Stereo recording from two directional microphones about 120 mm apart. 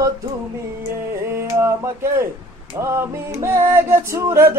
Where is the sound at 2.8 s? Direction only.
25° right (ahead or behind).